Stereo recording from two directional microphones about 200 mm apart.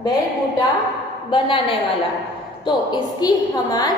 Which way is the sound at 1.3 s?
25° left (ahead or behind).